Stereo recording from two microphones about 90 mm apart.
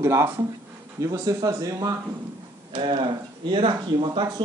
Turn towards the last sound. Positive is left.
turn(degrees=-60)  # may be behind; listen again after turning